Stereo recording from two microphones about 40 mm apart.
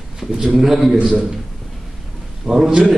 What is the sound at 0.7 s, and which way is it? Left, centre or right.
Speech, centre.